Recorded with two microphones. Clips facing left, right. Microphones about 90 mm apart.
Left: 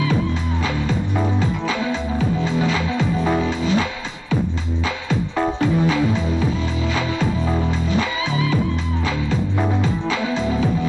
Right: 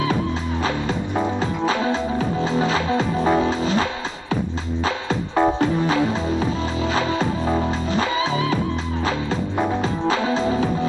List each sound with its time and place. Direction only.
1.4 s music: 35° right (ahead or behind)
5.6 s music: 40° right (ahead or behind)
10.0 s music: 40° right (ahead or behind)